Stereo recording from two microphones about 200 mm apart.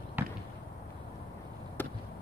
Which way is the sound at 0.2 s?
10° right (ahead or behind).